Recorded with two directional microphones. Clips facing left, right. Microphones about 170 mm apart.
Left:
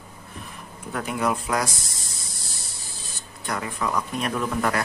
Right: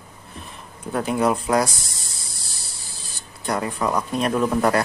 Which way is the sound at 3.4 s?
35° right (ahead or behind).